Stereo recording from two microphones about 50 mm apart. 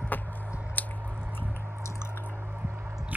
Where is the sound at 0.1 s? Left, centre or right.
Left.